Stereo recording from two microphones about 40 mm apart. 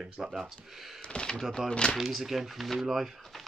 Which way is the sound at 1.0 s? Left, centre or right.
Left.